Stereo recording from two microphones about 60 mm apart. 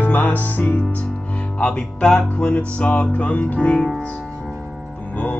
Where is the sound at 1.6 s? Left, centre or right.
Centre.